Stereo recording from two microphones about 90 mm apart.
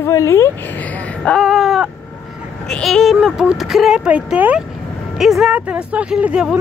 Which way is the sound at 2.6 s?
5° left (ahead or behind).